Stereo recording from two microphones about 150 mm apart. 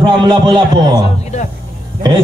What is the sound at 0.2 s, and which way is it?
Speech, 30° right (ahead or behind).